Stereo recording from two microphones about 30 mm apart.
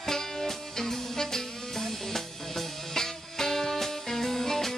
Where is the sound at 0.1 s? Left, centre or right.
Centre.